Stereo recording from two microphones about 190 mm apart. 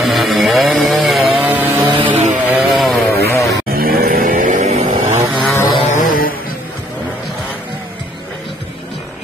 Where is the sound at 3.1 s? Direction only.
10° left (ahead or behind).